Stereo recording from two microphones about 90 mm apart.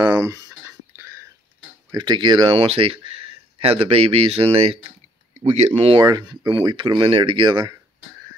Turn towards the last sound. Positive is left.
turn(degrees=-60)  # may be behind; listen again after turning